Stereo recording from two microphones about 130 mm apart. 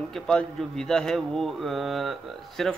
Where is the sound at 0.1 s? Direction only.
5° left (ahead or behind).